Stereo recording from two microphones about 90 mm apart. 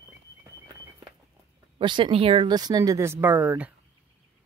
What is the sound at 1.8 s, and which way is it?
Speech, 60° right (ahead or behind).